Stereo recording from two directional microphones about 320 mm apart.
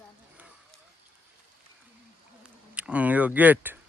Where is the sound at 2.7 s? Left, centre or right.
Centre.